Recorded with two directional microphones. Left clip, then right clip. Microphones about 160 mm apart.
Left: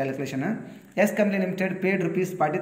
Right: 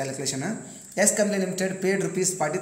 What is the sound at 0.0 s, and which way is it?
A man's voice, 30° right (ahead or behind).